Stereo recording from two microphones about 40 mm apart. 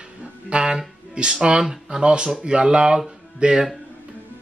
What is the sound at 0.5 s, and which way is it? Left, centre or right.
Speech, right.